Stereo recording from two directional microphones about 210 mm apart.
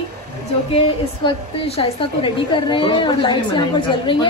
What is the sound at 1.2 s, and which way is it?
A woman's voice, 25° left (ahead or behind).